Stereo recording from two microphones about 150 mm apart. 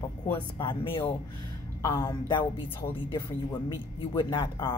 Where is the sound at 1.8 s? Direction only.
25° left (ahead or behind).